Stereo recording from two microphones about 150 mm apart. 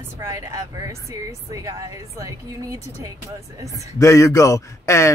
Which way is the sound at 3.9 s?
20° left (ahead or behind).